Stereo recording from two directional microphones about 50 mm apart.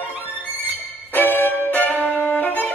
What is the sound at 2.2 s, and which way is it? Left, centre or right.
Violin, left.